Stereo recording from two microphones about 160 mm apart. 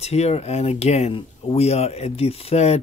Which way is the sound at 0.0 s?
40° left (ahead or behind).